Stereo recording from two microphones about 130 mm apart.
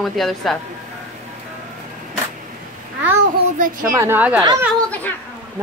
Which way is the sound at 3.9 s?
25° right (ahead or behind).